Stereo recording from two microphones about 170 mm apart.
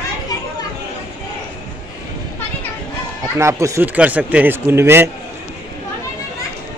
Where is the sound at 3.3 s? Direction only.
15° right (ahead or behind).